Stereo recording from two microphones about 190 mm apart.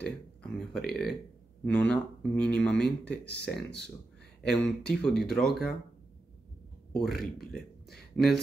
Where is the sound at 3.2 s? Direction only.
60° left (ahead or behind).